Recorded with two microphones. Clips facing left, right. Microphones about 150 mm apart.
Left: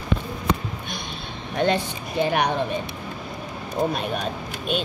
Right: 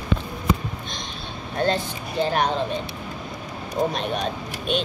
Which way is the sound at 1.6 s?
15° left (ahead or behind).